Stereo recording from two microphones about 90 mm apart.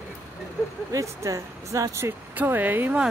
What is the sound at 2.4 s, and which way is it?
Speech, 20° right (ahead or behind).